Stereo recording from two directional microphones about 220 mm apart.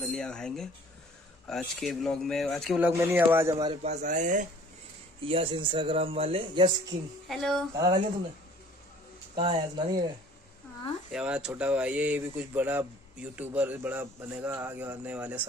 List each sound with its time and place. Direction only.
0.0 s speech: 5° left (ahead or behind)
2.9 s a man's voice: 10° right (ahead or behind)
3.9 s speech: 35° right (ahead or behind)
5.2 s speech: 25° right (ahead or behind)
7.2 s speech: centre (ahead or behind)
7.7 s a man's voice: 15° right (ahead or behind)
9.3 s speech: 20° right (ahead or behind)
11.1 s a man's voice: 5° right (ahead or behind)